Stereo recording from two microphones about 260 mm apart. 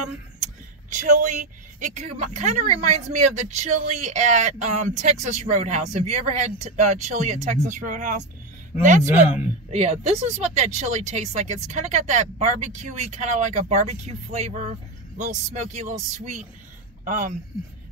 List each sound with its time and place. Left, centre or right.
0.4 s speech: right
9.0 s speech: centre
9.7 s speech: right
17.0 s speech: right